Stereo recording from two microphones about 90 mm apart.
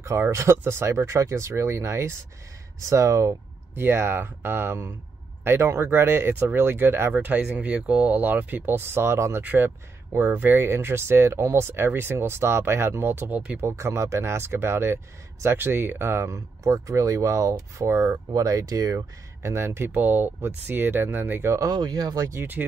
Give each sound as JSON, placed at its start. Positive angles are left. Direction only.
{"t": 0.0, "sound": "speech", "side_deg": -30}
{"t": 9.4, "sound": "speech", "side_deg": -20}
{"t": 18.1, "sound": "speech", "side_deg": -45}
{"t": 21.5, "sound": "speech", "side_deg": -50}
{"t": 22.4, "sound": "speech", "side_deg": -20}